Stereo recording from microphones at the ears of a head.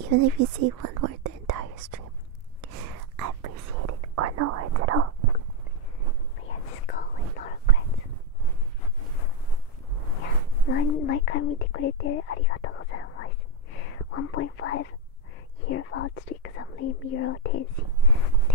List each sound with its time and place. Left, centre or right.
0.0 s whispering: right
6.4 s whispering: left
10.6 s speech: left